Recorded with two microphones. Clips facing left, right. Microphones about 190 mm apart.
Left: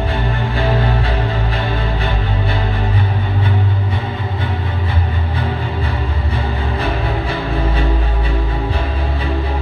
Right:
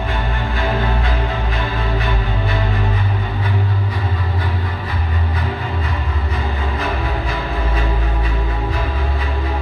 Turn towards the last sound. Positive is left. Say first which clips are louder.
# left 3 dB
turn(degrees=30)  # may be behind; listen again after turning